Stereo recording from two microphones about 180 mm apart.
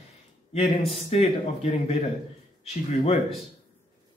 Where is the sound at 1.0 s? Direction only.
35° left (ahead or behind).